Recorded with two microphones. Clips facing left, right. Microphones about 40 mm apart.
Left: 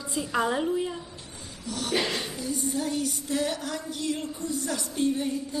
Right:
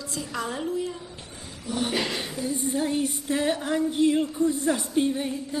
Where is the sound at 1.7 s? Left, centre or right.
Right.